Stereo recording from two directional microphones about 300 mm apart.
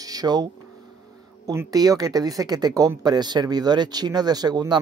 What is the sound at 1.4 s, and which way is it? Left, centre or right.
Speech, centre.